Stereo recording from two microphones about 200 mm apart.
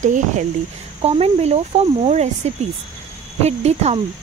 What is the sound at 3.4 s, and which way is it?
Speech, 30° right (ahead or behind).